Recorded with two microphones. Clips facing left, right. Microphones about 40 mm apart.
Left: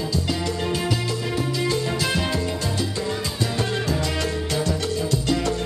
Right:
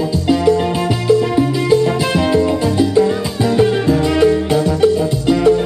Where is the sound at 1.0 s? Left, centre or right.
Centre.